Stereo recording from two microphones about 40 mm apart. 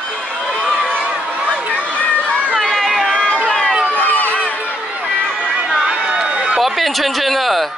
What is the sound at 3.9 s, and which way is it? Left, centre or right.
Run, left.